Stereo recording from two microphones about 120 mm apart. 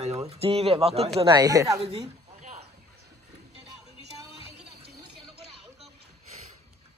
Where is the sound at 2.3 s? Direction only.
90° right.